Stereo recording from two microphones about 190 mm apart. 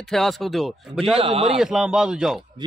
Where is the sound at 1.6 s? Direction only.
5° right (ahead or behind).